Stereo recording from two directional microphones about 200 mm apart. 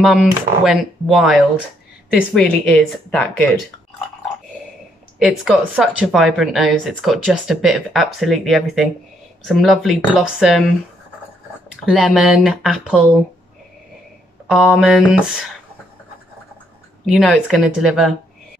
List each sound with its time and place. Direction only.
0.0 s speech: 5° right (ahead or behind)
5.2 s speech: 5° right (ahead or behind)
11.7 s speech: centre (ahead or behind)
14.5 s speech: centre (ahead or behind)
17.0 s speech: 5° left (ahead or behind)